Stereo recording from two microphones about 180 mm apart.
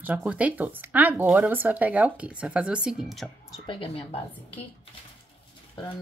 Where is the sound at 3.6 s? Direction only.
30° left (ahead or behind).